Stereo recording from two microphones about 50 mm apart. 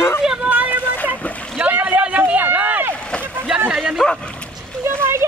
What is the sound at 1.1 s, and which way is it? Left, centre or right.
Splash, right.